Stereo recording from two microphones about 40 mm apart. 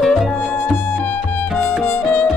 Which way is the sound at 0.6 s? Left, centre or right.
Left.